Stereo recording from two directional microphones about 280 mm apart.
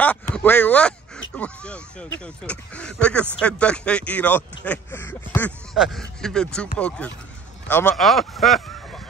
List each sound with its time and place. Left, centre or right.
0.0 s speech: centre